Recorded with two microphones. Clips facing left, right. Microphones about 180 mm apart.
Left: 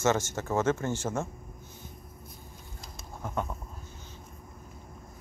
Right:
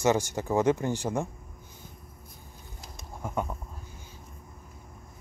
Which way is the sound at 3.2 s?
10° right (ahead or behind).